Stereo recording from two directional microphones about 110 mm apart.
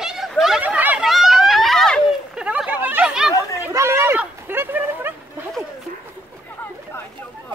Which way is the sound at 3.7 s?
25° right (ahead or behind).